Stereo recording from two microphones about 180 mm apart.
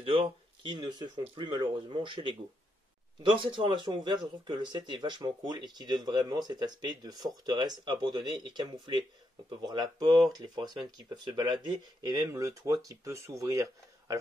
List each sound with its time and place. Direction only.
0.7 s speech: 25° right (ahead or behind)